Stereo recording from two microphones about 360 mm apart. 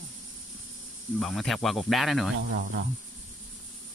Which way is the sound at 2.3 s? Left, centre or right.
Right.